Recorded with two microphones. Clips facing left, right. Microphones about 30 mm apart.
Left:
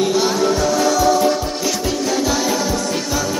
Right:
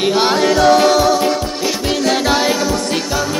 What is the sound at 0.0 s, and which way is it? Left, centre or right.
Music, right.